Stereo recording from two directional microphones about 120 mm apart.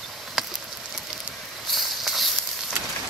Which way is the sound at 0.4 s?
5° right (ahead or behind).